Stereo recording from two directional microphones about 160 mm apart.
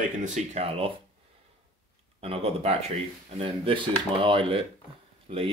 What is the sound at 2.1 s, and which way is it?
Speech, 40° right (ahead or behind).